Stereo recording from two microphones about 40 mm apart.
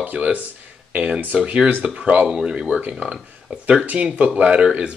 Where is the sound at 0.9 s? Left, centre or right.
Right.